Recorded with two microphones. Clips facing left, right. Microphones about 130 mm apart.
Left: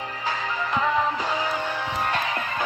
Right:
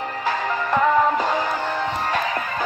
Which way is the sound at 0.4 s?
50° right (ahead or behind).